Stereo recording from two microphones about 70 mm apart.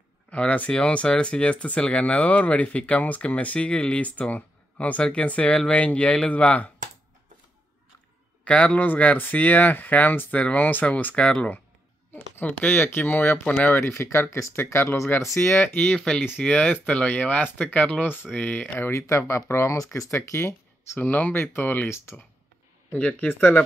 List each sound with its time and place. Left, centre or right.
0.3 s speech: centre
8.5 s speech: centre
18.9 s speech: left
21.0 s speech: left
22.9 s speech: left